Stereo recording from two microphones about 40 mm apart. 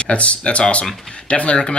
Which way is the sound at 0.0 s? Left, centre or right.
Left.